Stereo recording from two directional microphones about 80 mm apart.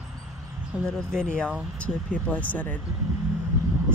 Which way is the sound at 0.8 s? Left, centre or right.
Centre.